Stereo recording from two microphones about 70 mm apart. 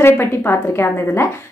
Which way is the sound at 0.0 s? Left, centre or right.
Left.